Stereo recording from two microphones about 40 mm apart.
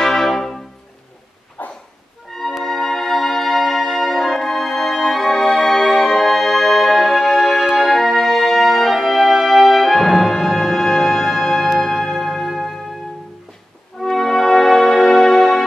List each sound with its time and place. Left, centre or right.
0.0 s brass instrument: centre
1.6 s a sound: left
2.3 s music: centre
14.0 s music: centre